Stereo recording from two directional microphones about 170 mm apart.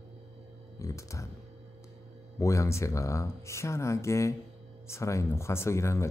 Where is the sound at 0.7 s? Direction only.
20° left (ahead or behind).